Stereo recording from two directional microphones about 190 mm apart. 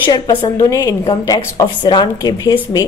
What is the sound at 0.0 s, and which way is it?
A woman's voice, 25° left (ahead or behind).